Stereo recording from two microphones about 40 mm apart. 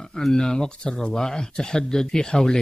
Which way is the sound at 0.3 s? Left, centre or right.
Centre.